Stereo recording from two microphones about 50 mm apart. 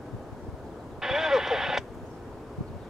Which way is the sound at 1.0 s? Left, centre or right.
Centre.